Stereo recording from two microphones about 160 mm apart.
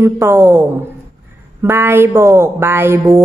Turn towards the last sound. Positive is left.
turn(degrees=-15)  # may be behind; listen again after turning